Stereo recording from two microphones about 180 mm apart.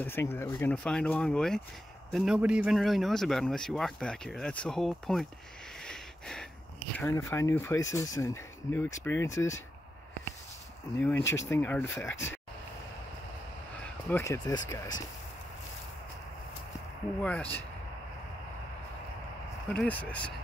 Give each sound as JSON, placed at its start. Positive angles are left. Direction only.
{"t": 0.0, "sound": "a man's voice", "side_deg": 10}
{"t": 5.8, "sound": "a sound", "side_deg": 5}
{"t": 7.0, "sound": "speech", "side_deg": 15}
{"t": 11.0, "sound": "speech", "side_deg": 10}
{"t": 14.0, "sound": "speech", "side_deg": 15}
{"t": 17.2, "sound": "speech", "side_deg": 10}
{"t": 19.7, "sound": "speech", "side_deg": 5}